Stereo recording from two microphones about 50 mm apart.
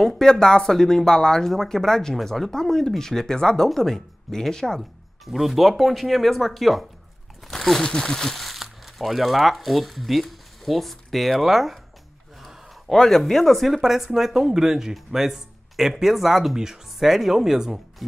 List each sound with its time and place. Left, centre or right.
0.2 s speech: centre
5.2 s speech: centre